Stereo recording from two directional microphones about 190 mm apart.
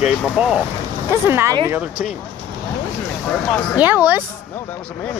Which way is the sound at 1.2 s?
15° right (ahead or behind).